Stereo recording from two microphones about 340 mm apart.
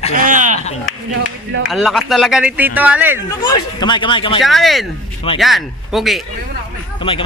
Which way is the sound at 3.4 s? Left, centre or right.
Centre.